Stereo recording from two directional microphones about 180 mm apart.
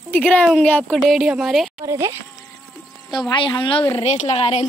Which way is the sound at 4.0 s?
35° left (ahead or behind).